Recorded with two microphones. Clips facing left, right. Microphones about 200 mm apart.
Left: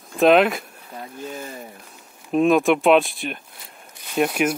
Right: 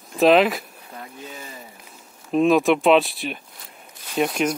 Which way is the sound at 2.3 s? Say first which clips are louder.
Even; centre (ahead or behind).